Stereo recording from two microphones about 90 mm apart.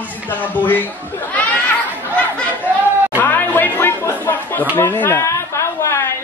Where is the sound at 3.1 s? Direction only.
25° left (ahead or behind).